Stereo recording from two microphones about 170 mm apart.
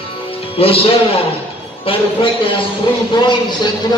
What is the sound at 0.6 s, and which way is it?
A man's voice, 35° left (ahead or behind).